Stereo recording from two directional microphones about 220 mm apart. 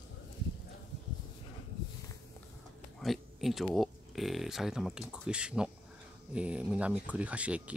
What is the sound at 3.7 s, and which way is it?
Speech, centre (ahead or behind).